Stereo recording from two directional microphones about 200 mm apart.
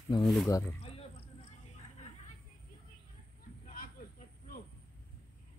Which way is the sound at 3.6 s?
45° left (ahead or behind).